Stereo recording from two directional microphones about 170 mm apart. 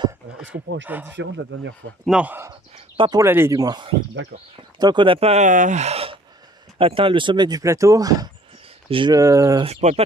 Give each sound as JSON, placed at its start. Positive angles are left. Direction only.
{"t": 0.5, "sound": "speech", "side_deg": -90}
{"t": 0.8, "sound": "speech", "side_deg": -10}
{"t": 1.1, "sound": "speech", "side_deg": -90}
{"t": 2.0, "sound": "speech", "side_deg": -5}
{"t": 3.0, "sound": "speech", "side_deg": -25}
{"t": 9.7, "sound": "speech", "side_deg": -40}